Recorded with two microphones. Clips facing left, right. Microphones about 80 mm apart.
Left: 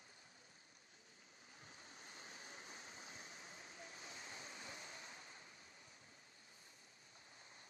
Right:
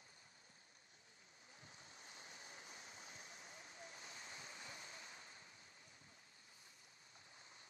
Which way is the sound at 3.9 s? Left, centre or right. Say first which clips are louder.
Left 1 dB; left.